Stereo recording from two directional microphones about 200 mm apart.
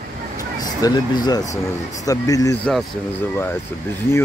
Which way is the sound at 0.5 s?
20° left (ahead or behind).